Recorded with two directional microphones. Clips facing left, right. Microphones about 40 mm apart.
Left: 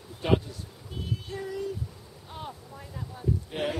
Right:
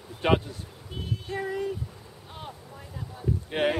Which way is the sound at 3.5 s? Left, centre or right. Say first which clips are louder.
Right 8 dB; right.